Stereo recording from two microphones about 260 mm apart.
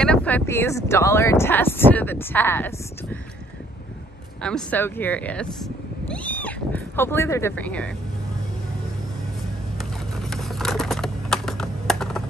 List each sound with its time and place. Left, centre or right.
0.0 s speech: centre
4.4 s speech: centre
9.8 s typing: centre